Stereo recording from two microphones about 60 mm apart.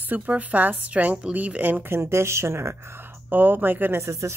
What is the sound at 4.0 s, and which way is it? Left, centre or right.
Speech, right.